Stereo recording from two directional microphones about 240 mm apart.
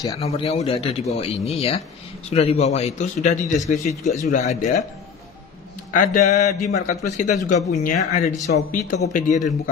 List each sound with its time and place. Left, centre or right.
0.2 s speech: left
5.9 s speech: left